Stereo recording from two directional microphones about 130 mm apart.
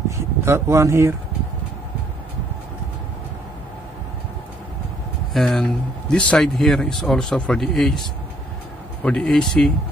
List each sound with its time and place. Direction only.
0.5 s speech: 20° right (ahead or behind)
5.3 s speech: 5° left (ahead or behind)